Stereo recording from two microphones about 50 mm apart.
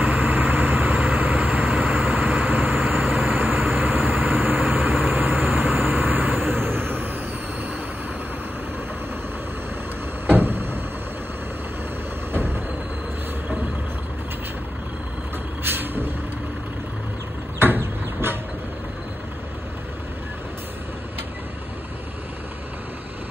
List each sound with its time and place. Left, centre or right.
0.0 s vehicle: right
10.2 s vehicle: right
15.6 s vehicle: right
17.6 s vehicle: right